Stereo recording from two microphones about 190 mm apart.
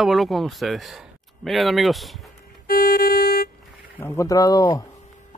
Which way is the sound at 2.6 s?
50° left (ahead or behind).